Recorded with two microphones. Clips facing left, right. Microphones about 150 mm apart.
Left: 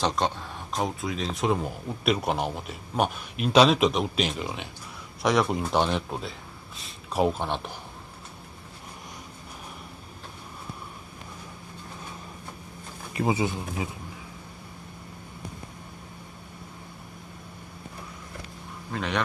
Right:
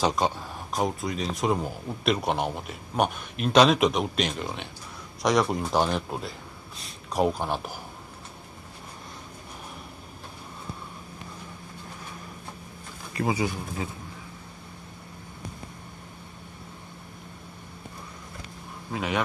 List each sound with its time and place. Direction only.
0.0 s speech: 5° right (ahead or behind)
13.1 s speech: 20° left (ahead or behind)
18.9 s speech: 5° right (ahead or behind)